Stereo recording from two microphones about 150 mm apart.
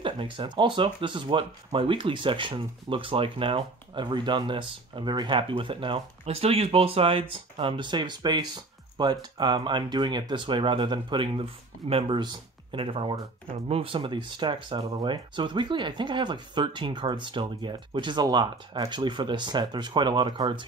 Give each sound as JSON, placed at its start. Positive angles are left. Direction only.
{"t": 0.0, "sound": "speech", "side_deg": -35}